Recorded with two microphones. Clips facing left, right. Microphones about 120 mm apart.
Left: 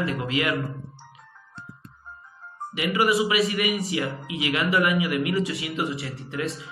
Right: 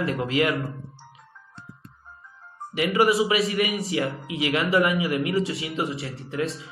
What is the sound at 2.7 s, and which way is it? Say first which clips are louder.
A man's voice: right 2 dB; 35° right (ahead or behind).